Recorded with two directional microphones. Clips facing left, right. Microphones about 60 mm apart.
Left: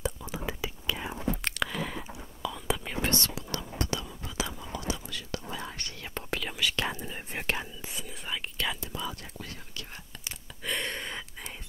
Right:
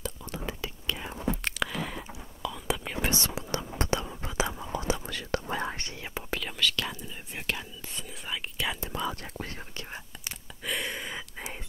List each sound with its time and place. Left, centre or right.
0.2 s whispering: centre
3.1 s whispering: centre
5.0 s whispering: right
5.8 s whispering: right
6.3 s whispering: centre
6.9 s whispering: left
7.9 s whispering: centre
8.9 s whispering: right
10.6 s a sound: centre